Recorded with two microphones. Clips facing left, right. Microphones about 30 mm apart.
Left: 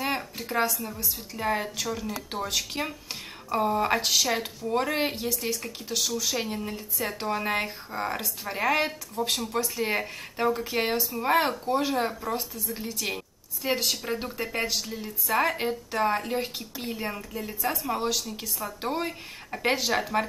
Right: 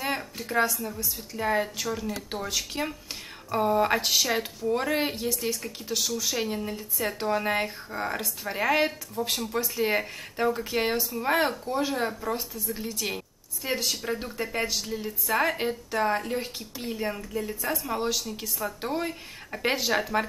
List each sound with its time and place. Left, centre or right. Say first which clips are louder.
0.0 s a sound: left 1 dB; centre
0.8 s a woman's voice: right 1 dB; centre
9.2 s speech: left 1 dB; centre
9.6 s a woman's voice: right 3 dB; centre
19.5 s a woman's voice: even; centre